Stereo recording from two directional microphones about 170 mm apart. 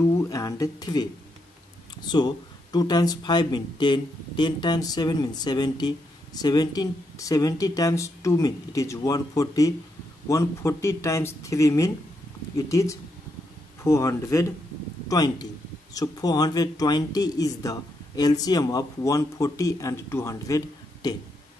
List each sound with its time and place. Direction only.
0.0 s speech: 20° left (ahead or behind)
2.0 s speech: 25° left (ahead or behind)